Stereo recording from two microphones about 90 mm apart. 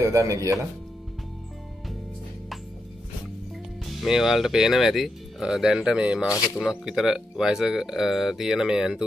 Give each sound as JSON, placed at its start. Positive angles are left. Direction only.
{"t": 0.0, "sound": "speech", "side_deg": -40}
{"t": 4.0, "sound": "speech", "side_deg": -5}